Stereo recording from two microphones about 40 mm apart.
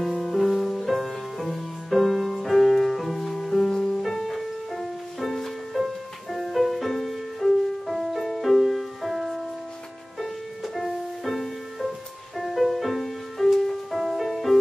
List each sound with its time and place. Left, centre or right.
0.2 s music: centre